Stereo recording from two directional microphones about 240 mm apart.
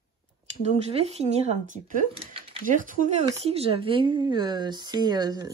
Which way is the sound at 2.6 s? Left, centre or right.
Right.